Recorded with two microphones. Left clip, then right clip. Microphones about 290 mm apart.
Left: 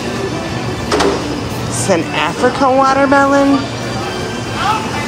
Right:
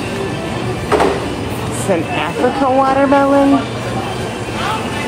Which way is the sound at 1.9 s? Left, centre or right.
Centre.